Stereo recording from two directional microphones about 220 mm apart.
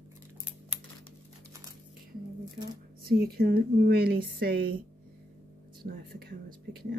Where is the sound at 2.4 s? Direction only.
20° right (ahead or behind).